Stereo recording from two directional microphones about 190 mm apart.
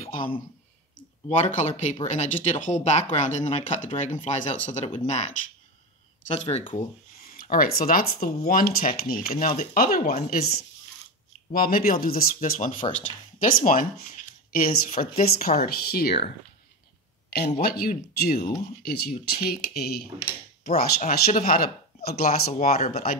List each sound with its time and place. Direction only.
0.1 s speech: 25° left (ahead or behind)
0.9 s speech: 40° left (ahead or behind)
6.3 s speech: 35° left (ahead or behind); by 10.4 s 50° left (ahead or behind)
11.5 s speech: 50° left (ahead or behind)
17.4 s speech: 55° left (ahead or behind)
21.3 s speech: 50° left (ahead or behind)
22.5 s speech: 35° left (ahead or behind)